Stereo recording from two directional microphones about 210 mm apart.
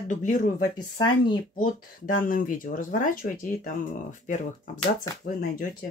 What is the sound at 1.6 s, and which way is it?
Speech, 40° left (ahead or behind).